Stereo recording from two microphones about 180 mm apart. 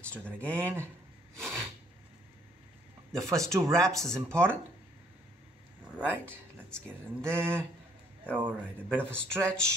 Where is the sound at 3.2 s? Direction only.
15° right (ahead or behind).